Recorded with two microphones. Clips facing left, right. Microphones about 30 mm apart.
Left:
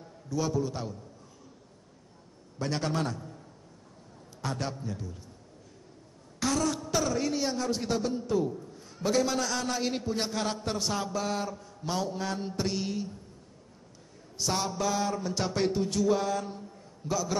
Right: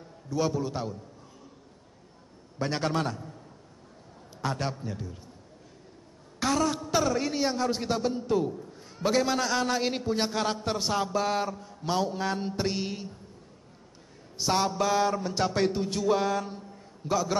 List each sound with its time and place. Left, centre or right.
0.3 s a man's voice: centre
2.6 s a sound: centre
4.4 s a man's voice: centre
6.4 s a sound: centre
8.9 s a man's voice: centre
14.3 s a man's voice: right
15.4 s music: centre
15.7 s a sound: centre
17.1 s a man's voice: right